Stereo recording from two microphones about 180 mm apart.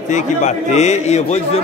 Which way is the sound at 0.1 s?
40° left (ahead or behind).